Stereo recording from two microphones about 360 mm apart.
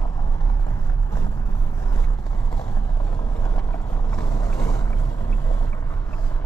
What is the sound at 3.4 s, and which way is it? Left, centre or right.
Vehicle, centre.